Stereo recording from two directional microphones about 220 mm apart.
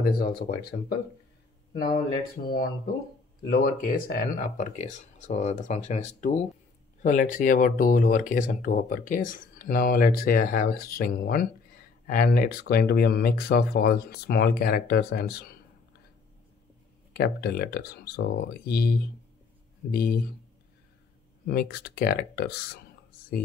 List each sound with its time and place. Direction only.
0.0 s speech: 45° left (ahead or behind)
3.4 s speech: 40° left (ahead or behind)
17.1 s speech: 45° left (ahead or behind)
21.5 s speech: 45° left (ahead or behind)